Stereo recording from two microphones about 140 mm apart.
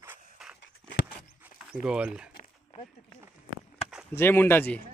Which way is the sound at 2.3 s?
45° left (ahead or behind).